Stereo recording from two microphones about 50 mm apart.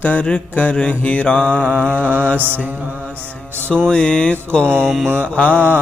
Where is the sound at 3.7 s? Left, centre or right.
Centre.